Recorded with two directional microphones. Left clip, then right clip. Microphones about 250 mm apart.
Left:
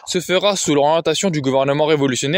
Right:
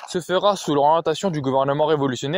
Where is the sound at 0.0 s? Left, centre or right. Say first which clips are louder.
Left 3 dB; left.